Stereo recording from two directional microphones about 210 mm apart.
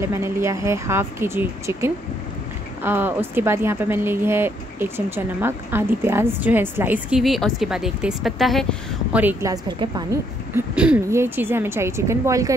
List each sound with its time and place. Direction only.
0.1 s a woman's voice: 15° right (ahead or behind)
10.5 s a woman's voice: 5° right (ahead or behind)